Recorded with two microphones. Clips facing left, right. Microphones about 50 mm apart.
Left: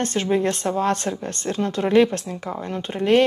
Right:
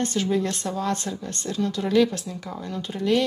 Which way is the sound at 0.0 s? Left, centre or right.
Left.